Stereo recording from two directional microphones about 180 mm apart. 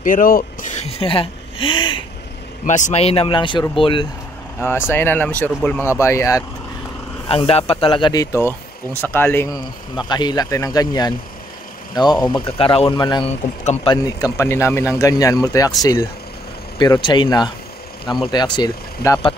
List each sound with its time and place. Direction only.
0.0 s a sound: 50° left (ahead or behind); by 2.0 s 25° left (ahead or behind)
2.6 s speech: 45° left (ahead or behind); by 4.1 s 30° left (ahead or behind)
4.6 s speech: 10° left (ahead or behind)
7.2 s speech: 30° left (ahead or behind); by 9.6 s 15° left (ahead or behind)
10.0 s speech: 25° left (ahead or behind)